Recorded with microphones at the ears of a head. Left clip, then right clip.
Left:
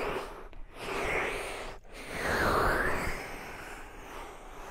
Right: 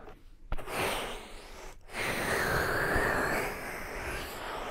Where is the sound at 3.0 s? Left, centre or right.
Right.